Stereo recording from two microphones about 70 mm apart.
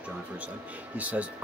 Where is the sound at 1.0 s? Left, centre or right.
Right.